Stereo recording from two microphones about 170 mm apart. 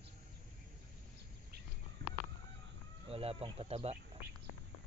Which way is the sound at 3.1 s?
35° right (ahead or behind).